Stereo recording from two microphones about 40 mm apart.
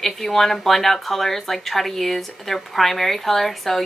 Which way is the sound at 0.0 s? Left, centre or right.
Centre.